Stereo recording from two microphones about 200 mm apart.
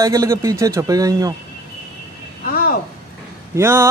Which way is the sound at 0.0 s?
15° right (ahead or behind).